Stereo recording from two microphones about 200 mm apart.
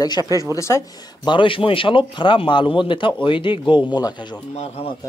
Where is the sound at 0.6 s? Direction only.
15° left (ahead or behind).